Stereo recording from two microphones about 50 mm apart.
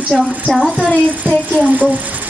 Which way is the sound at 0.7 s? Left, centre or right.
Left.